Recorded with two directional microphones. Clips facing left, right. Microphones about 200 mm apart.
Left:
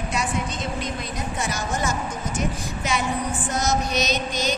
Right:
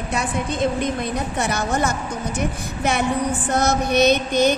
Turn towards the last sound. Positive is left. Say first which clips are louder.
# right 9 dB
turn(degrees=-60)  # may be behind; listen again after turning